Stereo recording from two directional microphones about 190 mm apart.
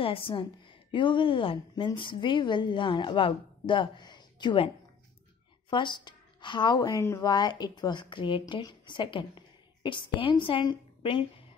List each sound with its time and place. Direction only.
0.0 s a woman's voice: 30° left (ahead or behind)
5.7 s a woman's voice: 25° left (ahead or behind)